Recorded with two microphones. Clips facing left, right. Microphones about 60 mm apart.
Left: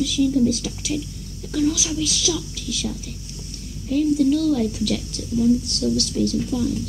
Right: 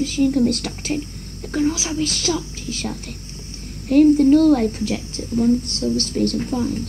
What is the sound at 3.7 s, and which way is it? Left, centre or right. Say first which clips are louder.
Speech: right 7 dB; right.